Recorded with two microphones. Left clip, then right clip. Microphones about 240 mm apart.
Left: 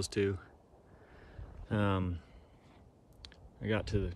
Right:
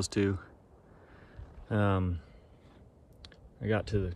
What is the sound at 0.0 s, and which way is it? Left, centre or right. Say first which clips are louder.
Speech: right 2 dB; centre.